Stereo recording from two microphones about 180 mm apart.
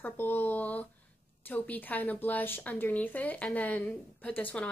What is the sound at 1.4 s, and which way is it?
A woman's voice, 10° left (ahead or behind).